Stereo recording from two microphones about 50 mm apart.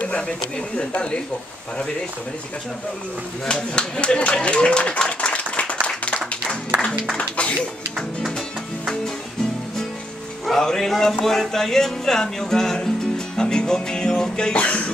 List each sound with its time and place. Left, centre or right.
0.7 s speech: left
3.7 s speech: centre
7.2 s speech: left
10.4 s speech: centre
13.4 s music: centre
14.6 s speech: left